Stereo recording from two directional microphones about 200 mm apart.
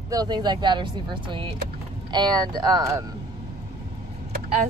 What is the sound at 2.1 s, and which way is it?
Speech, 20° right (ahead or behind).